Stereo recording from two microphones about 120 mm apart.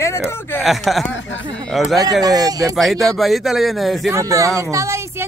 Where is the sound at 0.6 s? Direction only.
Centre (ahead or behind).